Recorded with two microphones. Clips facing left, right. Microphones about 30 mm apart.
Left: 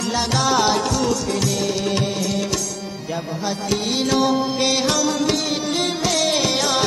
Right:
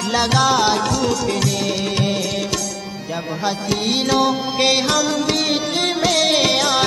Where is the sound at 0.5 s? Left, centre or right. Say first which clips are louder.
Right 1 dB; centre.